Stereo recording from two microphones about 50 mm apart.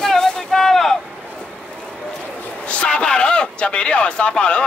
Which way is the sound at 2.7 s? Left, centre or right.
Left.